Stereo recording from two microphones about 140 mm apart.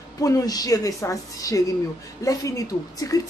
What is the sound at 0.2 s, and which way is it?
A woman's voice, 25° left (ahead or behind).